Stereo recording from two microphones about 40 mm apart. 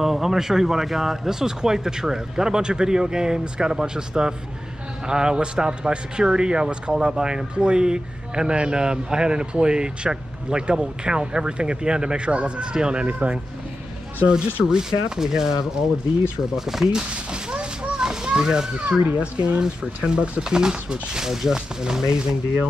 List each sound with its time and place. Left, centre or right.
0.0 s speech: centre
13.0 s speech: right
14.3 s speech: centre
17.1 s children playing: right
19.1 s speech: right
19.6 s speech: centre